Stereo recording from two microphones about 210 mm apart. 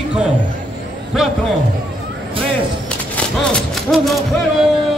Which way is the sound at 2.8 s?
5° left (ahead or behind).